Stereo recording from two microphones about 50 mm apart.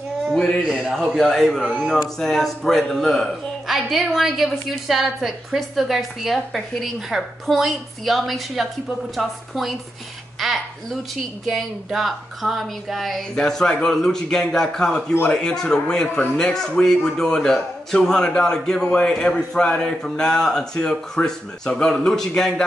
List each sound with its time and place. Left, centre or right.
0.3 s a sound: centre
1.1 s a woman's voice: centre
3.6 s a woman's voice: centre
13.4 s a man's voice: centre